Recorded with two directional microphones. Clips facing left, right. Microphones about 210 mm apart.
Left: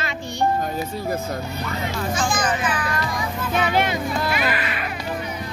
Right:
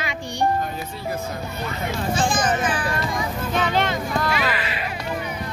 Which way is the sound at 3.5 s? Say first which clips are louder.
Left 1 dB; 10° left (ahead or behind).